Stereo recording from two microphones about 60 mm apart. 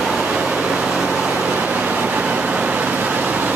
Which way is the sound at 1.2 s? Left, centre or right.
Right.